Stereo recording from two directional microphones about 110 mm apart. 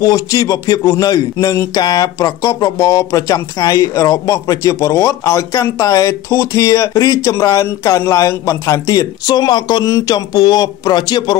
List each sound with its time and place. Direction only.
0.0 s speech: 30° left (ahead or behind)